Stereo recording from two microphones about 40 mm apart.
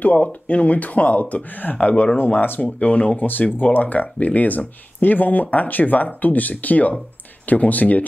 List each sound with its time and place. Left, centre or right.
0.0 s speech: left
2.1 s speech: left
2.6 s speech: left